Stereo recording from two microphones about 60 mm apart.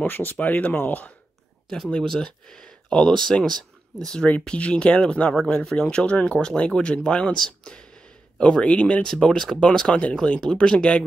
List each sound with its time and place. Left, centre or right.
0.0 s speech: left
1.9 s speech: centre